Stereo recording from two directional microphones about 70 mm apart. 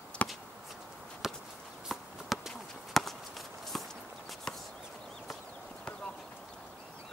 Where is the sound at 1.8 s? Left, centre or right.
Centre.